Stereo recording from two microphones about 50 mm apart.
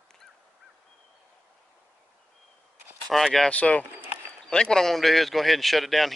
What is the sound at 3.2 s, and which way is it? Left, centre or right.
Speech, centre.